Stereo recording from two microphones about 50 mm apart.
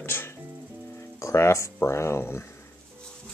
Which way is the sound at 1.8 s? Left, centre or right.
Left.